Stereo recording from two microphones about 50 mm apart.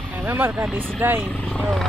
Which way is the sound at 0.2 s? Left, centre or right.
Right.